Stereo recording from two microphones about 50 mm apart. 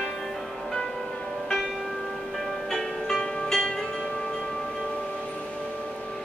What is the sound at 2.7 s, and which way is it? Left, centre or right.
Music, centre.